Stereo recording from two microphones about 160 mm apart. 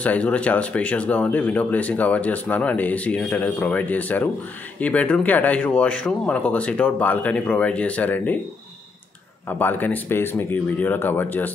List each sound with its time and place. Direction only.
0.0 s speech: 10° left (ahead or behind)
9.5 s speech: 10° left (ahead or behind)